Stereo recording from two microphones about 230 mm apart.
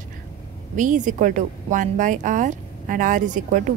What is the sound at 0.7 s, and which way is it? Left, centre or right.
A woman's voice, right.